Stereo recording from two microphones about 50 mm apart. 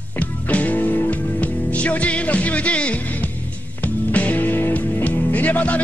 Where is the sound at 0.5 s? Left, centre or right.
Left.